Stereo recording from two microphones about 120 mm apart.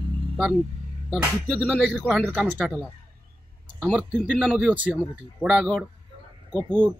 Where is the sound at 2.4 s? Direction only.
15° right (ahead or behind).